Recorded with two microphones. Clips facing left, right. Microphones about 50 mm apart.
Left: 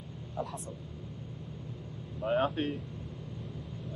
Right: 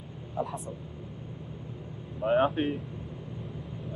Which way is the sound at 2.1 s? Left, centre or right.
Centre.